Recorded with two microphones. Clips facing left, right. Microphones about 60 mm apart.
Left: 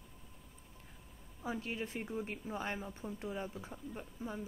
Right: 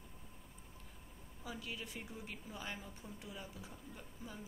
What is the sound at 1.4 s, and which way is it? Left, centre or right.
A woman's voice, left.